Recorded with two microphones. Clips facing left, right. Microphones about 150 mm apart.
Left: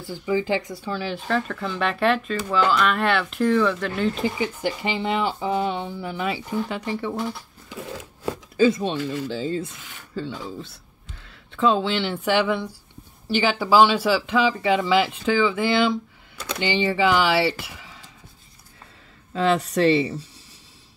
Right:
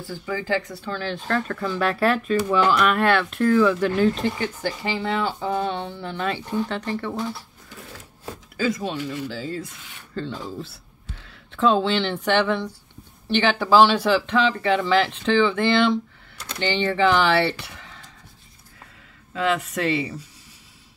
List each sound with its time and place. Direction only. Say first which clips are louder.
0.0 s speech: left 5 dB; 15° left (ahead or behind)
7.7 s a sound: left 8 dB; 90° left
8.5 s speech: left 5 dB; 25° left (ahead or behind)
10.1 s speech: right 1 dB; 5° left (ahead or behind)
19.3 s speech: left 3 dB; 35° left (ahead or behind)